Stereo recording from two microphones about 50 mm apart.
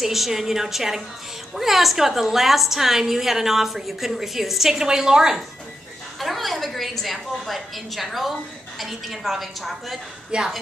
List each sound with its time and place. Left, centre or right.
0.0 s a woman's voice: centre
6.1 s a woman's voice: centre
10.3 s a woman's voice: centre